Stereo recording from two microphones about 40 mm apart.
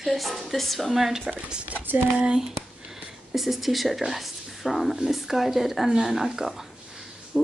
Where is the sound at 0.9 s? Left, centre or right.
Centre.